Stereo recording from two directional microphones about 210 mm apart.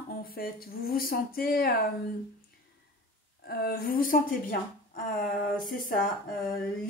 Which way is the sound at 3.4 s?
45° left (ahead or behind).